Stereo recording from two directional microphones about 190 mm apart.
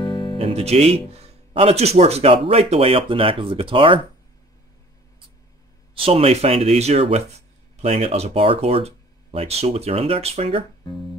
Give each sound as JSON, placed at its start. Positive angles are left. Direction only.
{"t": 0.0, "sound": "music", "side_deg": 25}
{"t": 0.4, "sound": "speech", "side_deg": -30}
{"t": 5.9, "sound": "speech", "side_deg": -30}